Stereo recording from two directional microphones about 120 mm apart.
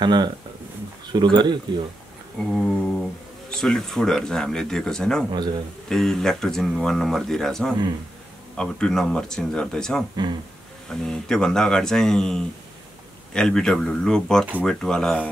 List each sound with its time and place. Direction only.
0.0 s speech: 40° right (ahead or behind)
2.5 s speech: 5° left (ahead or behind)
5.3 s speech: 35° right (ahead or behind)
5.9 s speech: 5° left (ahead or behind)